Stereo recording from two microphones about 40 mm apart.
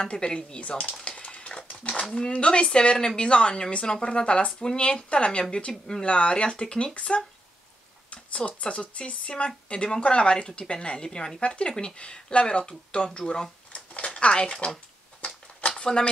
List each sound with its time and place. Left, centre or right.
0.0 s a woman's voice: left
1.0 s boiling: left
1.8 s a woman's voice: left
5.7 s speech: centre
6.0 s a woman's voice: left
13.2 s speech: centre
13.7 s a sound: left